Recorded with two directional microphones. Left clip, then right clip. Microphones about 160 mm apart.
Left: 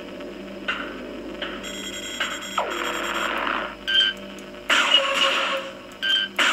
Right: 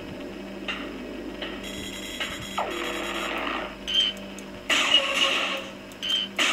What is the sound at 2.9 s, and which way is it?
Alarm clock, 35° left (ahead or behind).